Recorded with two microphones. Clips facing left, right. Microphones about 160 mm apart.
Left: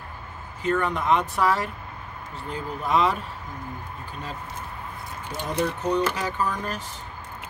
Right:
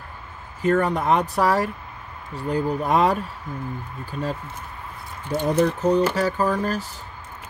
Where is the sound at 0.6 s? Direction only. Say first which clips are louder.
Right 5 dB; 40° right (ahead or behind).